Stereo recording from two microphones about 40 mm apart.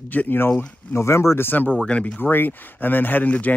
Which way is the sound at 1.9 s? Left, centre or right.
Left.